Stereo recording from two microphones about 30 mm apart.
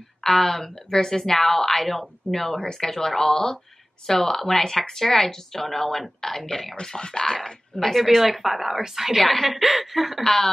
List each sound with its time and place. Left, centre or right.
0.2 s speech: centre
2.6 s speech: left
2.9 s speech: centre
6.8 s speech: left
8.2 s speech: centre
9.2 s a woman's voice: centre
10.2 s speech: centre